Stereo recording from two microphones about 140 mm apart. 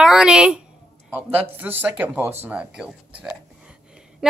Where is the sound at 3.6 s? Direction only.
5° right (ahead or behind).